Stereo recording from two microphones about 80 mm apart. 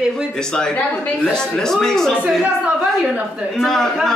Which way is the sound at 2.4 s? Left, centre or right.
Centre.